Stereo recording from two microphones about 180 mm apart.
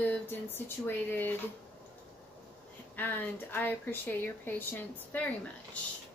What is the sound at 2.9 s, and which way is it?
A woman's voice, 10° left (ahead or behind).